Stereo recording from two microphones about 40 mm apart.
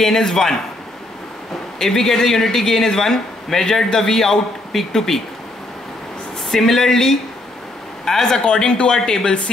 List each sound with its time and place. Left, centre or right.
0.0 s speech: centre
1.8 s speech: centre
6.5 s speech: centre